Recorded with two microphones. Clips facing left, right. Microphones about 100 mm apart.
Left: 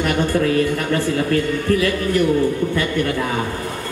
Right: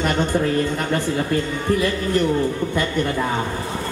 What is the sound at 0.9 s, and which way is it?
Speech, 15° right (ahead or behind).